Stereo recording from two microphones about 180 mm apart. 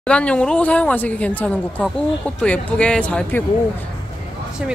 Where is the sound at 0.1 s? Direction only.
5° left (ahead or behind).